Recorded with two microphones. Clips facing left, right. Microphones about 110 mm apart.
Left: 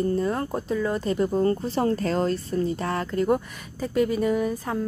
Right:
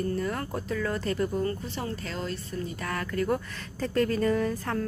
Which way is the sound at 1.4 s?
35° left (ahead or behind).